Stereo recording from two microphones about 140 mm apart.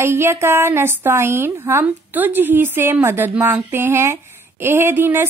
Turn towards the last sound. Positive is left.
turn(degrees=-15)  # may be behind; listen again after turning